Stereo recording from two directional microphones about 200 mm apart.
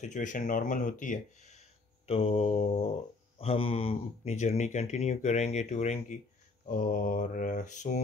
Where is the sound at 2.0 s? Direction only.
30° left (ahead or behind).